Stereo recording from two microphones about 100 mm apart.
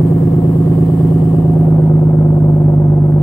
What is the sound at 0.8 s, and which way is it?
Vehicle, 5° left (ahead or behind).